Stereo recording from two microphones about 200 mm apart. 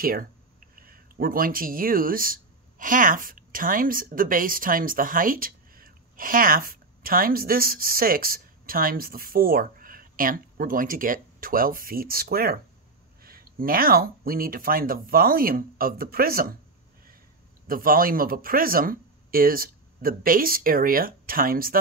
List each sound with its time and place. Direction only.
0.0 s speech: 45° right (ahead or behind)
17.6 s speech: 45° right (ahead or behind)